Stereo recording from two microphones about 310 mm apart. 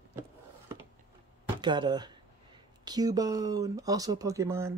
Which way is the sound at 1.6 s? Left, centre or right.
Centre.